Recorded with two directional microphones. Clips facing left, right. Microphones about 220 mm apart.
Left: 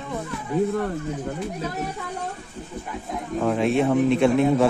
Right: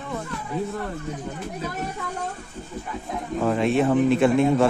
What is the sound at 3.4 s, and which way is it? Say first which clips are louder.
Speech: even; centre (ahead or behind).